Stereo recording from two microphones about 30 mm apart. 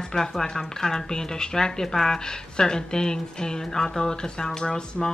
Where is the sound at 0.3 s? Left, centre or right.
Centre.